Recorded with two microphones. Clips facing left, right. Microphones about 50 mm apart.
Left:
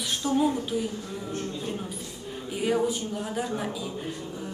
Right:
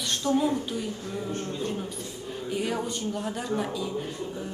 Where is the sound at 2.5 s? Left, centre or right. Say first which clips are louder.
Left 4 dB; centre.